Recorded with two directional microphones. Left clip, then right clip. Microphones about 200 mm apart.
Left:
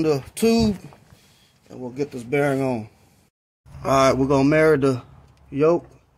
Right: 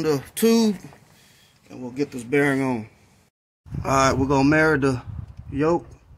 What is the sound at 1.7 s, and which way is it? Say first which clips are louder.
Speech: even; 50° left (ahead or behind).